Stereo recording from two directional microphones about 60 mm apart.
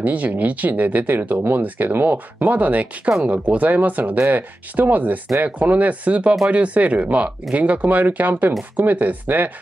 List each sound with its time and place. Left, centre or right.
0.0 s speech: right